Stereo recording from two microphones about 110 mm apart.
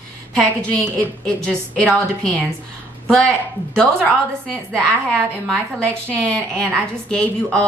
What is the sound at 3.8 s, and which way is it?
A woman's voice, 5° left (ahead or behind).